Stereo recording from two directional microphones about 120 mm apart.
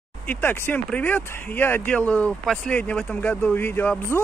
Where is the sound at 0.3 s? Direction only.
15° left (ahead or behind).